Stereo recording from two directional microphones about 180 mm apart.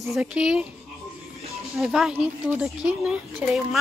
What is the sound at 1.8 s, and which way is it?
Speech, centre (ahead or behind).